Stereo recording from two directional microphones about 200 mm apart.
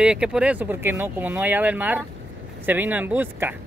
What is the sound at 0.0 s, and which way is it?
Speech, 5° right (ahead or behind).